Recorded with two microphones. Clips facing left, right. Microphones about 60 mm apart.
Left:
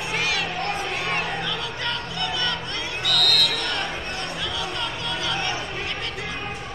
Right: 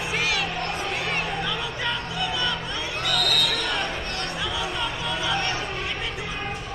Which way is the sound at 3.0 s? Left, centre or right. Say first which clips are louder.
Left 2 dB; left.